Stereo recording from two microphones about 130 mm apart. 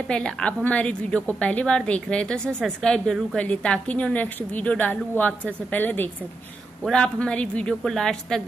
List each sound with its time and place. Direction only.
0.1 s a woman's voice: 5° left (ahead or behind)